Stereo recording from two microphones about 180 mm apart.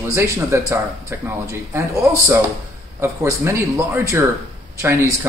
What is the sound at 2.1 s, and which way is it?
Speech, 10° right (ahead or behind).